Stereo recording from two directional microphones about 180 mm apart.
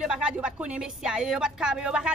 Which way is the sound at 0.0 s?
5° right (ahead or behind).